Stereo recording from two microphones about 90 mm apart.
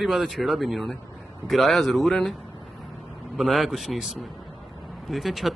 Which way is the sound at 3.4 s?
Centre (ahead or behind).